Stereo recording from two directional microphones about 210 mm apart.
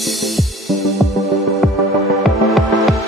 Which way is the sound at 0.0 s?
Centre (ahead or behind).